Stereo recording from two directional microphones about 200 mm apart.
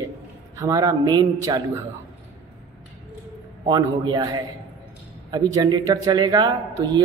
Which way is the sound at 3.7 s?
20° right (ahead or behind).